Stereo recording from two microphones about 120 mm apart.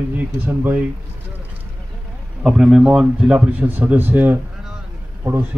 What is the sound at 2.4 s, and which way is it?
Speech, 5° right (ahead or behind).